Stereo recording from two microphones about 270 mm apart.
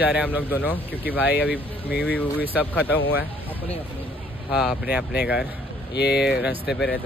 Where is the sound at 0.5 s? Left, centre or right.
Centre.